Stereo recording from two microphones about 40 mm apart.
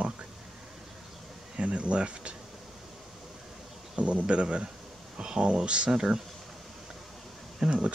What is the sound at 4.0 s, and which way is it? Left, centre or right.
Speech, right.